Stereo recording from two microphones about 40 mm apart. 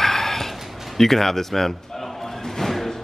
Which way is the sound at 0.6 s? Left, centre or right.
Centre.